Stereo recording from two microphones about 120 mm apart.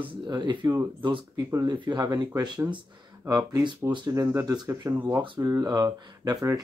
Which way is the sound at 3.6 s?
40° right (ahead or behind).